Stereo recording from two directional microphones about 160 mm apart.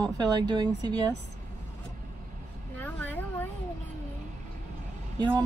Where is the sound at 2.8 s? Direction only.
10° left (ahead or behind).